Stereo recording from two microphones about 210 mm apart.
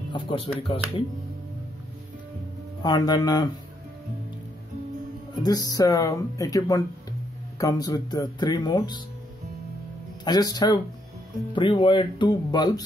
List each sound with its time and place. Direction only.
0.1 s speech: 25° left (ahead or behind)
2.8 s speech: 20° left (ahead or behind)
5.4 s speech: 15° left (ahead or behind)
10.2 s speech: 20° left (ahead or behind)